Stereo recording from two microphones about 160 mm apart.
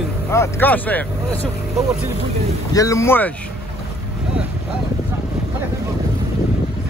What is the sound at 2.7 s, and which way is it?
Speech, 20° left (ahead or behind).